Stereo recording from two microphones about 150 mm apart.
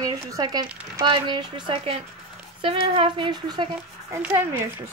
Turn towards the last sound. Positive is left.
turn(degrees=-15)  # may be behind; listen again after turning